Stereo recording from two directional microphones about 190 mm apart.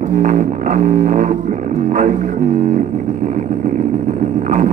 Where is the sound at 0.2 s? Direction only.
45° right (ahead or behind).